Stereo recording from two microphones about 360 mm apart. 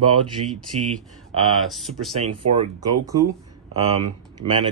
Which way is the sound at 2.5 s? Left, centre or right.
Centre.